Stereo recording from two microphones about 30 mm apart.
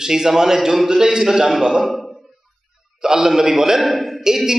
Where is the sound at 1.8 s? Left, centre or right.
Centre.